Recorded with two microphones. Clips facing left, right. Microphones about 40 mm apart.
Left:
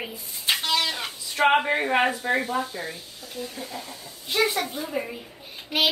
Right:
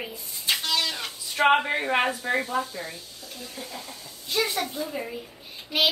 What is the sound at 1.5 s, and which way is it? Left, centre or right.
A child's voice, centre.